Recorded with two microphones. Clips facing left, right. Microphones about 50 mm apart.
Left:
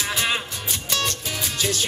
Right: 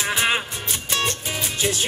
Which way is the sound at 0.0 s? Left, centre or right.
Right.